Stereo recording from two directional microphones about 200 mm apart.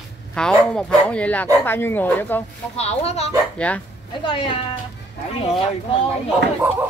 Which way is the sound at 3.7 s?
5° left (ahead or behind).